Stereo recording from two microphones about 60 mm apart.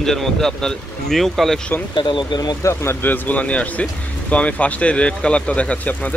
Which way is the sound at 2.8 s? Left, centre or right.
Left.